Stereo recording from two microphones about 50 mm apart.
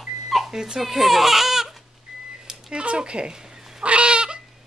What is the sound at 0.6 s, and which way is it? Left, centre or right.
Speech, centre.